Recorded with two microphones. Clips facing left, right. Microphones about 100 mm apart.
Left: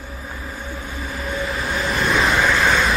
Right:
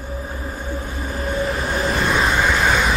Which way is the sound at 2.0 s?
20° right (ahead or behind).